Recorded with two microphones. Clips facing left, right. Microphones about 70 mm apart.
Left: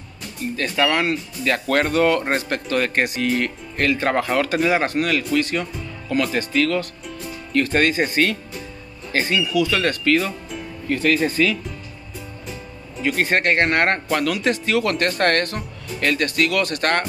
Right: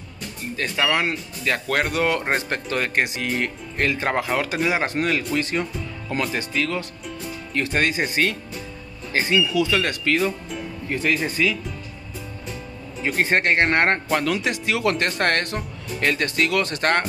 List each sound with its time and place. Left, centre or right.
0.6 s speech: centre
6.3 s speech: centre; by 9.8 s right
9.8 s speech: centre
10.9 s speech: centre
11.1 s speech: centre
13.1 s speech: centre